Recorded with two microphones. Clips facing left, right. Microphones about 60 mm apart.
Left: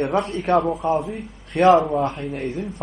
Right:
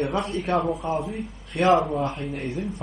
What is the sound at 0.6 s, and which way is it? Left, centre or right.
Speech, centre.